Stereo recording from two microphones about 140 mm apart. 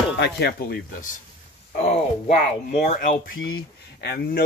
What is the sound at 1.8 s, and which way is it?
Speech, 50° left (ahead or behind).